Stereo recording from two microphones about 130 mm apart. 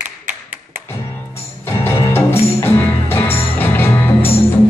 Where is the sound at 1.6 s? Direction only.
20° left (ahead or behind).